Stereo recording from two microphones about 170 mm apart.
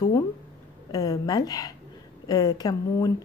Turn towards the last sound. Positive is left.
turn(degrees=20)  # may be behind; listen again after turning